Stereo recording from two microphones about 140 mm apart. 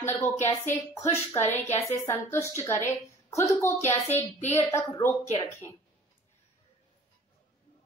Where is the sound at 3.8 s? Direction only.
50° left (ahead or behind).